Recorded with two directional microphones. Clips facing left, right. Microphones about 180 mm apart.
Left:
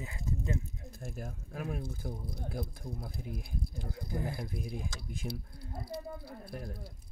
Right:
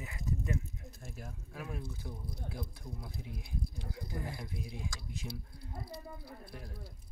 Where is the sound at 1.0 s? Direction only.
45° left (ahead or behind).